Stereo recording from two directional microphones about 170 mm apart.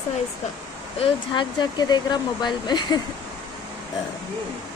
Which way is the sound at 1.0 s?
30° left (ahead or behind).